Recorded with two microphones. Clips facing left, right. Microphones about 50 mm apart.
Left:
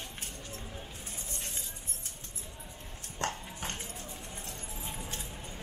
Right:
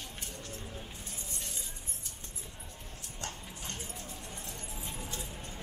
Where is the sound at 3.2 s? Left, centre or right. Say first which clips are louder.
Left 8 dB; left.